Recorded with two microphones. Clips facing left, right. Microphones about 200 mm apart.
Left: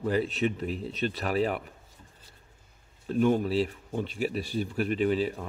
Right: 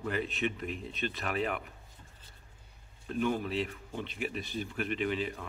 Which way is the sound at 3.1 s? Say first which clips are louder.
Left 7 dB; 40° left (ahead or behind).